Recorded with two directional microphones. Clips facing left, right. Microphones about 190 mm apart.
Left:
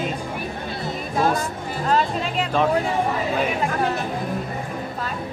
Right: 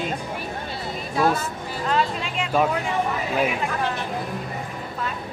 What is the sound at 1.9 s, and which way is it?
Speech, 40° left (ahead or behind).